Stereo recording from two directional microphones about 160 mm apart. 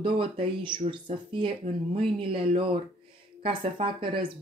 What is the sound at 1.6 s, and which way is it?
Speech, 45° right (ahead or behind).